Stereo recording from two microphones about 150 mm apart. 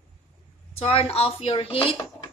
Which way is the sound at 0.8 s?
45° left (ahead or behind).